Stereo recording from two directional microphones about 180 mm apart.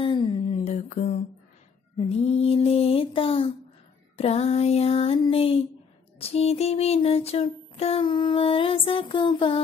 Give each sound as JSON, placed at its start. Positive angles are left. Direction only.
{"t": 0.0, "sound": "a sound", "side_deg": 30}
{"t": 2.0, "sound": "mantra", "side_deg": 35}
{"t": 4.2, "sound": "music", "side_deg": 35}